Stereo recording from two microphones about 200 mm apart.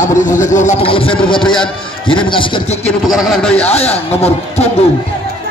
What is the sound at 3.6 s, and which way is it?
A man's voice, 30° left (ahead or behind).